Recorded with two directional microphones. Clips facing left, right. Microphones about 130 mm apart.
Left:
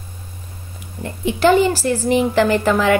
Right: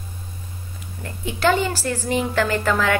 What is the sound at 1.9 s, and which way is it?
Speech, 15° left (ahead or behind).